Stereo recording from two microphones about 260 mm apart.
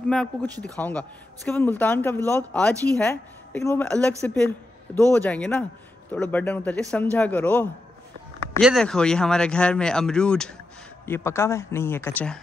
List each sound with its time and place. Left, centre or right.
0.1 s a man's voice: centre